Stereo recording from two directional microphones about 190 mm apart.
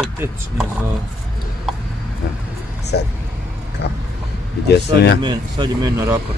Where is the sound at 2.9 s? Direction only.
60° left (ahead or behind).